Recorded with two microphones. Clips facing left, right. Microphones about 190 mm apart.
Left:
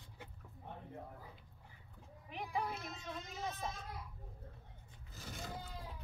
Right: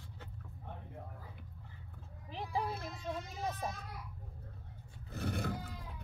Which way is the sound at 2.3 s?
30° right (ahead or behind).